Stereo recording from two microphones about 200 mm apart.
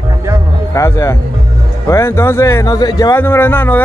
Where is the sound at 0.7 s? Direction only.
15° left (ahead or behind).